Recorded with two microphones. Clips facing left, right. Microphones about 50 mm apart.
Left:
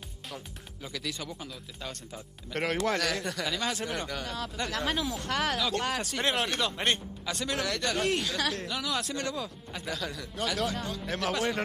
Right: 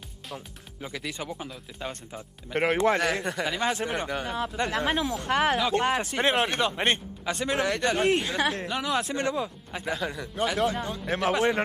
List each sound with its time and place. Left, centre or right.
0.3 s speech: centre